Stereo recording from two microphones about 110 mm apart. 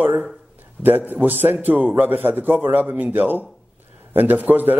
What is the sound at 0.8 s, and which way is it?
A man's voice, 15° right (ahead or behind).